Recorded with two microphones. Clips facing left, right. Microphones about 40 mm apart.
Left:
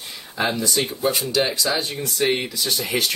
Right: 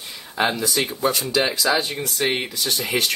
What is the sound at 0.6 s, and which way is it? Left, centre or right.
Speech, centre.